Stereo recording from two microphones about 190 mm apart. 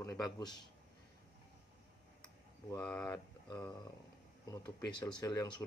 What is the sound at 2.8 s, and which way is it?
Speech, 5° left (ahead or behind).